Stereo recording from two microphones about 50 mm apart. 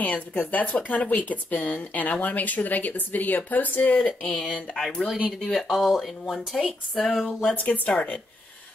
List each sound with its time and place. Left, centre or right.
0.0 s speech: left
4.0 s speech: left
4.7 s speech: centre
7.4 s speech: left